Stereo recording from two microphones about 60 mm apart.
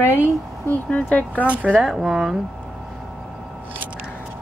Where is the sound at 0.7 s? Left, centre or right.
Left.